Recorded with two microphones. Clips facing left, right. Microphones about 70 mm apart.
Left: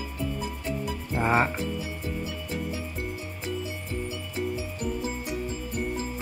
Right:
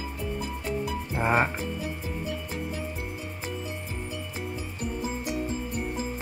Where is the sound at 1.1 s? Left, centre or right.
Centre.